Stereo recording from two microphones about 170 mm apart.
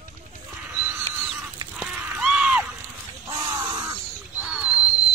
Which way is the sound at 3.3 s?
15° right (ahead or behind).